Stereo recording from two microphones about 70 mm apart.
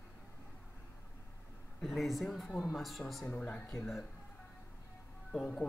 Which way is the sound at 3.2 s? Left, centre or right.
Centre.